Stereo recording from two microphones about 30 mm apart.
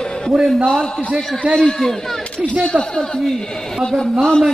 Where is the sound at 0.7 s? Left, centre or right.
Centre.